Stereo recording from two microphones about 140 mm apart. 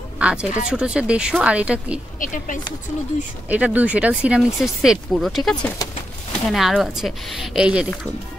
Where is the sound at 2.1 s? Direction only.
70° left (ahead or behind).